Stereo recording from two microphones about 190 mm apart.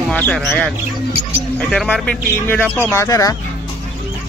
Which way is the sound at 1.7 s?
5° left (ahead or behind).